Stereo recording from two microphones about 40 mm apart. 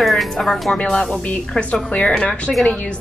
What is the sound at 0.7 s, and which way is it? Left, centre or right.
Speech, left.